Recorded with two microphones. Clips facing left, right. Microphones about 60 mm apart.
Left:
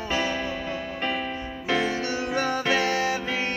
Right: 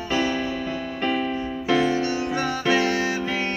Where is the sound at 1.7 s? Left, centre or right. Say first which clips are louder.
Right 4 dB; left.